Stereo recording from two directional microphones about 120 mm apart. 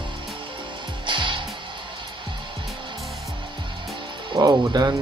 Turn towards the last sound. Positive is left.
turn(degrees=-30)  # may be behind; listen again after turning